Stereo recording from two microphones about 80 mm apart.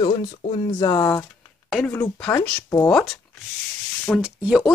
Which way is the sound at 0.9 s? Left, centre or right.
Left.